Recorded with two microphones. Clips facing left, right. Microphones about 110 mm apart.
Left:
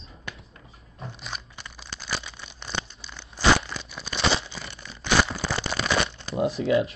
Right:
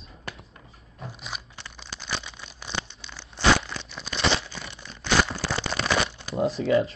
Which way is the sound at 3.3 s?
5° left (ahead or behind).